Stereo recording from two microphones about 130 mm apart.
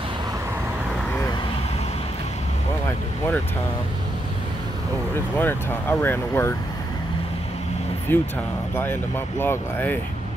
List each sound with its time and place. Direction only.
5.4 s speech: 15° left (ahead or behind)
8.1 s speech: 15° left (ahead or behind)
9.4 s speech: 15° left (ahead or behind)